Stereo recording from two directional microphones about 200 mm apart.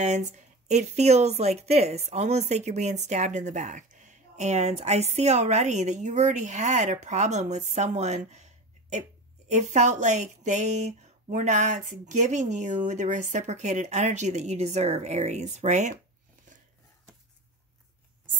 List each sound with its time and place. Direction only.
0.0 s speech: 35° right (ahead or behind)
9.5 s speech: 35° right (ahead or behind)